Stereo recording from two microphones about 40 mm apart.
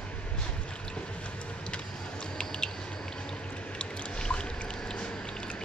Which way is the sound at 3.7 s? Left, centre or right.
Left.